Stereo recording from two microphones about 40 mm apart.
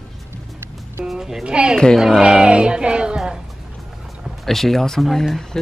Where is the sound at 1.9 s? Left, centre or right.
Centre.